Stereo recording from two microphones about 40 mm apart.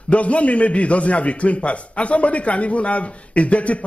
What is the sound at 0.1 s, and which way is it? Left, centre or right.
A man's voice, left.